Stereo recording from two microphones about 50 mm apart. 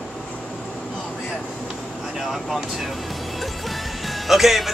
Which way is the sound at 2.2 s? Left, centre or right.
Centre.